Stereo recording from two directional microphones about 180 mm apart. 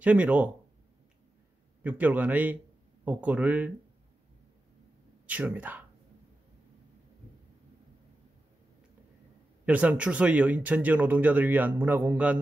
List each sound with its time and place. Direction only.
0.0 s speech: 10° right (ahead or behind)
1.8 s speech: 10° right (ahead or behind)
5.2 s speech: 10° right (ahead or behind)
9.7 s speech: 5° right (ahead or behind)